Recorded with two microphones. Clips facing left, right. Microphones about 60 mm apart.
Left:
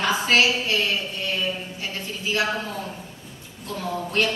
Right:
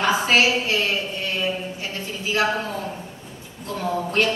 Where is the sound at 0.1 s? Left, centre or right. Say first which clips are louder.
Right 1 dB; centre.